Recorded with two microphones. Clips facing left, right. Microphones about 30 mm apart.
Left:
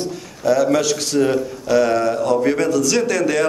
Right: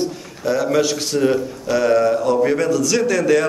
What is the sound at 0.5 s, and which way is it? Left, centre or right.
A man's voice, centre.